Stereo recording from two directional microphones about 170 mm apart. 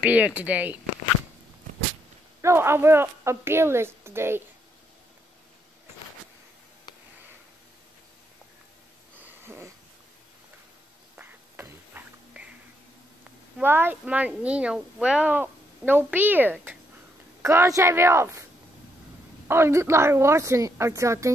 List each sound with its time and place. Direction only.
0.0 s speech: 10° right (ahead or behind)
2.4 s speech: 15° right (ahead or behind)
11.1 s a sound: 10° right (ahead or behind)
13.6 s speech: 10° right (ahead or behind)
19.4 s speech: 15° right (ahead or behind)